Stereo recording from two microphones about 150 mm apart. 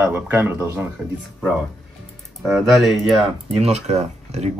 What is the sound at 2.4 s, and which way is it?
Speech, centre (ahead or behind).